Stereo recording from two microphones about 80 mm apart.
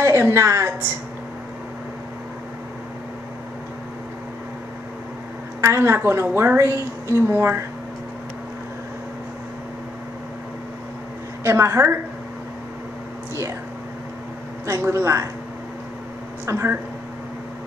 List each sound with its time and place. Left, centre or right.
0.0 s a woman's voice: right
5.6 s a woman's voice: right
11.4 s a woman's voice: right
14.9 s a woman's voice: right
16.4 s speech: right